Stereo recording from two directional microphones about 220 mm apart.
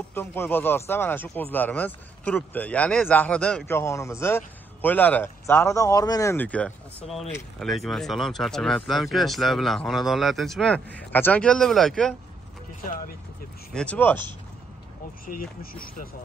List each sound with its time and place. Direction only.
0.1 s speech: 10° left (ahead or behind)
13.7 s speech: 5° left (ahead or behind)
15.2 s speech: 40° left (ahead or behind)